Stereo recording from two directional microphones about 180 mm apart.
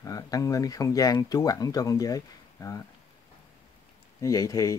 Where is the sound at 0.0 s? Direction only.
20° left (ahead or behind).